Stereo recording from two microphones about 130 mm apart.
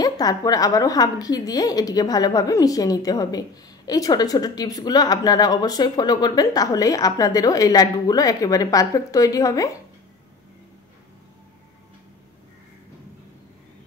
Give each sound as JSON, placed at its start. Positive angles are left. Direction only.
{"t": 0.0, "sound": "a woman's voice", "side_deg": 30}